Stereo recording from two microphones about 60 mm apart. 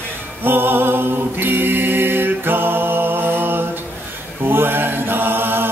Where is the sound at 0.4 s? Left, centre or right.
Right.